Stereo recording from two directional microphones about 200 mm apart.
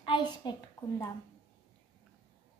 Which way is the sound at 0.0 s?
20° left (ahead or behind).